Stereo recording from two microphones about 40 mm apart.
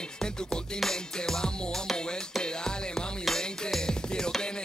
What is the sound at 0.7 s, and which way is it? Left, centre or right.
Music, centre.